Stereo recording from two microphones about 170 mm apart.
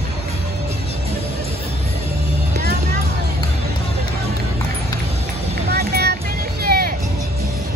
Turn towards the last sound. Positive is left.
turn(degrees=-65)  # may be behind; listen again after turning